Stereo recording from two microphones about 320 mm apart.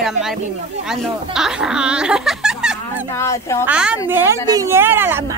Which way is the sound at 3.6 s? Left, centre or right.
Centre.